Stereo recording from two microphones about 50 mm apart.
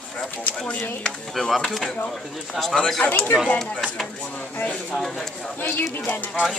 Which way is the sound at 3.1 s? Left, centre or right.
Left.